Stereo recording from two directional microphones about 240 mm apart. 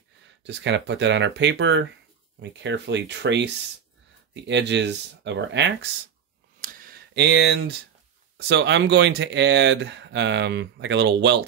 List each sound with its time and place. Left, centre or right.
0.4 s speech: right
6.6 s a sound: right
8.4 s speech: right